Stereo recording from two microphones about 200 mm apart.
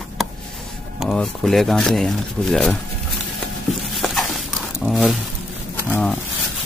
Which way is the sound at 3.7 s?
Centre (ahead or behind).